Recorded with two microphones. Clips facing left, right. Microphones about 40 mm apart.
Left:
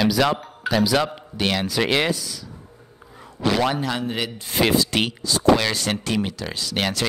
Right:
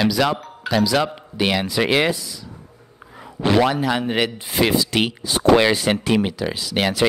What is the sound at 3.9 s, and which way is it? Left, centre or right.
Speech, right.